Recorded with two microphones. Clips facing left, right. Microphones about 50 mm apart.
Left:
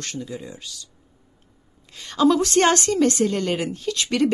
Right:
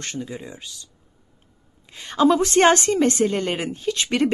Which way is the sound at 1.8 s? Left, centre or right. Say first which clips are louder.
Right 1 dB; right.